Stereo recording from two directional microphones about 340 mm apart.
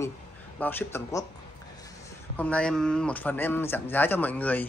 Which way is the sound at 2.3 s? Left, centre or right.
Centre.